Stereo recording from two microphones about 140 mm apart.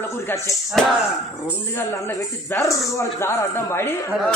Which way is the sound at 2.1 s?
20° left (ahead or behind).